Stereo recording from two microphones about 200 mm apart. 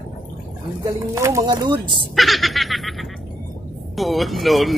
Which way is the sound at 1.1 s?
15° right (ahead or behind).